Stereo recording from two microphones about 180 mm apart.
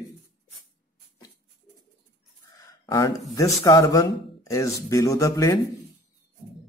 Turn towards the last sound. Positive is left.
turn(degrees=20)  # may be behind; listen again after turning